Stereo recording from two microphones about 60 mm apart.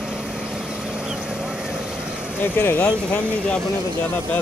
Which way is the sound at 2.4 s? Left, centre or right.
Left.